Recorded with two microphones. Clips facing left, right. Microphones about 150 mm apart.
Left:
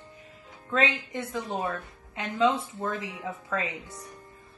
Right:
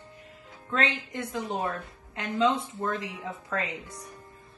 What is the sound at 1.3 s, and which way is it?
Speech, 20° right (ahead or behind).